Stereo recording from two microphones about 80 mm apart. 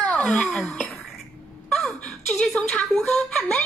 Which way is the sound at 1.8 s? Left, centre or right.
Centre.